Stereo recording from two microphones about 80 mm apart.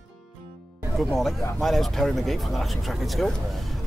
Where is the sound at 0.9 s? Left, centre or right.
Centre.